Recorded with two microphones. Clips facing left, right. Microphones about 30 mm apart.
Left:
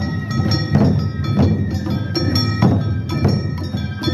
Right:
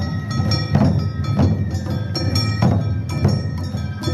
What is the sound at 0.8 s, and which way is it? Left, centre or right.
Music, centre.